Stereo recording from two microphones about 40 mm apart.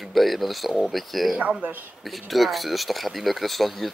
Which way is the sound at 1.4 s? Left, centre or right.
Right.